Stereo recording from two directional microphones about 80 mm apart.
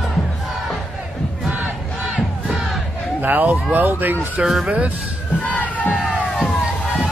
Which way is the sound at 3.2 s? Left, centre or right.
Right.